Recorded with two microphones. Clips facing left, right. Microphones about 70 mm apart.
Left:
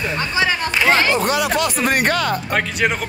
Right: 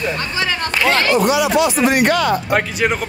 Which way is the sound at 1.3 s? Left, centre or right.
Left.